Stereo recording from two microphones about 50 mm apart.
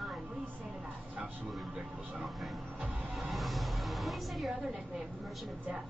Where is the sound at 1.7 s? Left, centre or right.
Centre.